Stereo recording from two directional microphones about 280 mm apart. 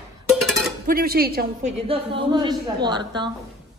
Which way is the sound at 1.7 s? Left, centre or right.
Centre.